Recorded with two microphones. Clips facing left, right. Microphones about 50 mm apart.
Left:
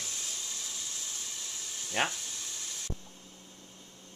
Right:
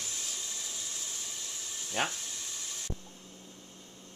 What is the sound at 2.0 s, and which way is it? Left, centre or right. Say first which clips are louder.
Speech: left 2 dB; left.